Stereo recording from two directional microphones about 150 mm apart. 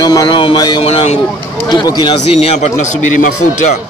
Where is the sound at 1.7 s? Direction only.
30° left (ahead or behind); by 2.9 s 45° left (ahead or behind).